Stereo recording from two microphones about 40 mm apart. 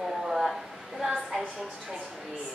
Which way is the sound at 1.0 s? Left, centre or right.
Centre.